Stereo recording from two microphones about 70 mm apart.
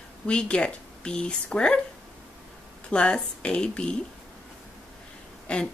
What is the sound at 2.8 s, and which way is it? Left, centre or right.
Speech, centre.